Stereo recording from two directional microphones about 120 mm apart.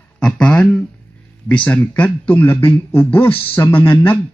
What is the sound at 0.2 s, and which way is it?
Speech, 5° left (ahead or behind).